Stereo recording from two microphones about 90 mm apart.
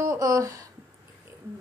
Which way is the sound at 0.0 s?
40° right (ahead or behind).